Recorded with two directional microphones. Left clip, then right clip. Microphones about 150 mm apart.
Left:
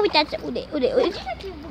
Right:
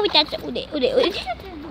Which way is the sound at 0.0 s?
10° left (ahead or behind).